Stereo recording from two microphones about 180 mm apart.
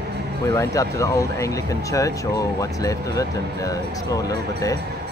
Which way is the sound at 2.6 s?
20° left (ahead or behind).